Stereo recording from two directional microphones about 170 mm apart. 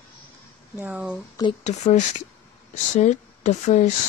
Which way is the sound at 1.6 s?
45° left (ahead or behind).